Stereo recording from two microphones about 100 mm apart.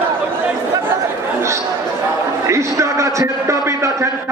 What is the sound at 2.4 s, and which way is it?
A man's voice, 30° right (ahead or behind).